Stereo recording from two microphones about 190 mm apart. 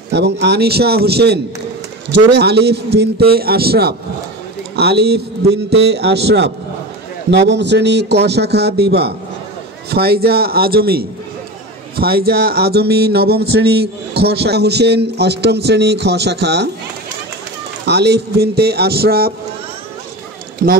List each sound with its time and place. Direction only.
0.1 s speech: 60° right (ahead or behind)
17.8 s speech: 60° right (ahead or behind)
20.6 s speech: 45° right (ahead or behind)